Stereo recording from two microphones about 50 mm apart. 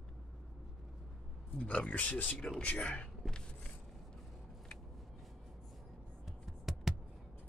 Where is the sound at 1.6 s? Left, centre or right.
Left.